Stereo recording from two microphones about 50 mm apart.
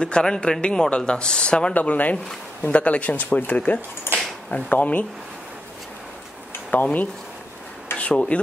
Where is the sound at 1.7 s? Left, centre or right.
Left.